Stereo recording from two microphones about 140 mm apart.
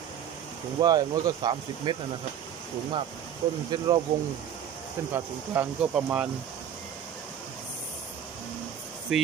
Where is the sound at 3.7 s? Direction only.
30° right (ahead or behind).